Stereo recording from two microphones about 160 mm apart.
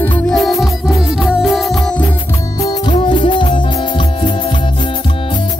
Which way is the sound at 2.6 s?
25° left (ahead or behind).